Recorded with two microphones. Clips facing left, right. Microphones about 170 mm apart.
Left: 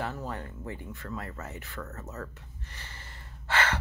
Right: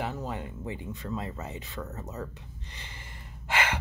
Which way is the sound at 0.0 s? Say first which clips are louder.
Right 1 dB; 15° right (ahead or behind).